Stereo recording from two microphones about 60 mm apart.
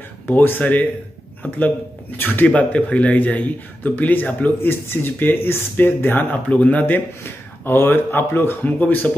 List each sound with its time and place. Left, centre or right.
0.3 s speech: left
2.1 s speech: left
4.6 s speech: left
7.6 s speech: left